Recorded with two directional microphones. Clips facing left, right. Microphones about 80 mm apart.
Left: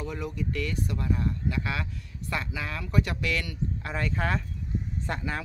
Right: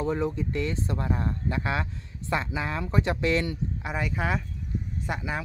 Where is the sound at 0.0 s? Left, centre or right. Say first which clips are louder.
Right 6 dB; right.